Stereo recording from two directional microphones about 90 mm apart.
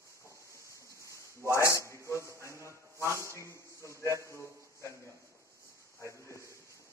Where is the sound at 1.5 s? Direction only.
35° left (ahead or behind).